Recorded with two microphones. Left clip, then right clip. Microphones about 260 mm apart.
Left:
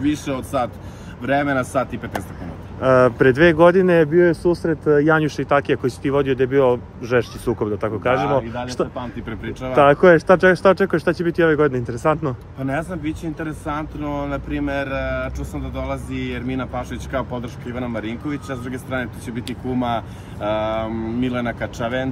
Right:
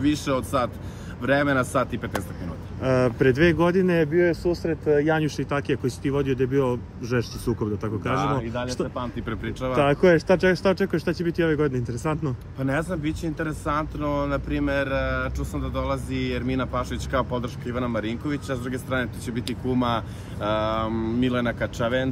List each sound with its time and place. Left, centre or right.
0.2 s speech: centre
4.4 s speech: left
5.3 s speech: centre
8.1 s speech: centre